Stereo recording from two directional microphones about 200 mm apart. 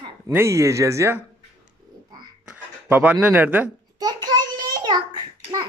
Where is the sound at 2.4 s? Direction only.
10° right (ahead or behind).